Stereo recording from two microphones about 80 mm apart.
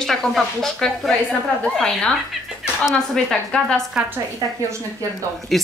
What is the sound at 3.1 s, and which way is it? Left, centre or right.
Speech, centre.